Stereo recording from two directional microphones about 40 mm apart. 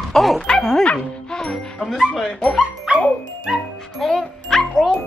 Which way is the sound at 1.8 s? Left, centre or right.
Centre.